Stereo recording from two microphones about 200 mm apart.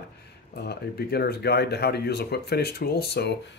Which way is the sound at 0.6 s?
50° left (ahead or behind).